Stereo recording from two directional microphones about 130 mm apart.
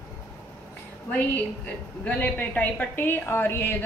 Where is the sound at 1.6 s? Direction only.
15° left (ahead or behind).